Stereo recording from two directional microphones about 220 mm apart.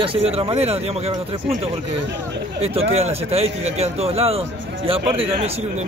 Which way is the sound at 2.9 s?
30° right (ahead or behind).